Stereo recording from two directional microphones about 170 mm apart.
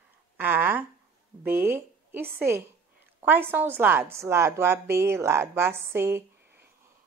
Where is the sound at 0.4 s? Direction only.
10° right (ahead or behind).